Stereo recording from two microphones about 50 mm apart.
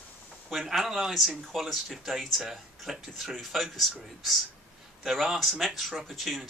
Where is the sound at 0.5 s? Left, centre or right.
Centre.